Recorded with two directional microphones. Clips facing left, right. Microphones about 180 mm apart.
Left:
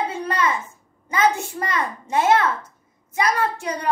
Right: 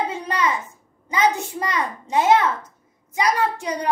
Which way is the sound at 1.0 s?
15° right (ahead or behind).